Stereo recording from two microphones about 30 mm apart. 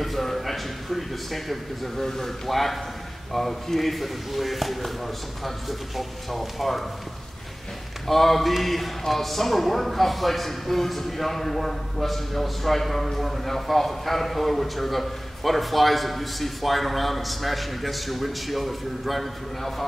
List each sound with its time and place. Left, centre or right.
0.0 s a sound: centre
2.0 s a man's voice: centre
8.1 s a man's voice: centre